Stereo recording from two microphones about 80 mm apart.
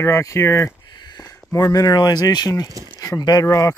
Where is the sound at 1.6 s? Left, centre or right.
Left.